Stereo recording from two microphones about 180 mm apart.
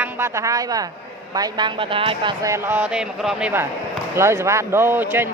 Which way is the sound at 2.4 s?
15° right (ahead or behind).